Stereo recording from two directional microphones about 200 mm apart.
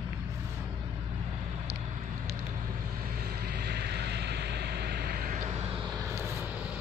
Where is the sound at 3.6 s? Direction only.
55° right (ahead or behind).